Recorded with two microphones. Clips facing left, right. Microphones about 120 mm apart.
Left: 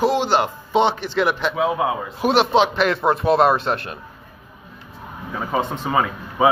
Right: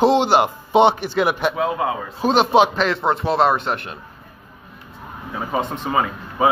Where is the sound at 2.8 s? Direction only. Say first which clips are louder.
Left 1 dB; 25° right (ahead or behind).